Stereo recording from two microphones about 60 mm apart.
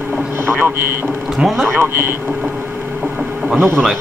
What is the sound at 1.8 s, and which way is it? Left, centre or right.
Speech, right.